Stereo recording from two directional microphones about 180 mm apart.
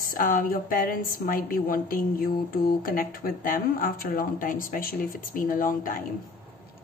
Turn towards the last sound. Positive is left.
turn(degrees=50)  # may be behind; listen again after turning